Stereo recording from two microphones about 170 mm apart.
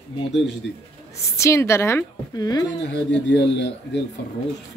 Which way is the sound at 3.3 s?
90° left.